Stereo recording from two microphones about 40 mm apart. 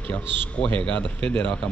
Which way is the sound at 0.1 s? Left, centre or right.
Left.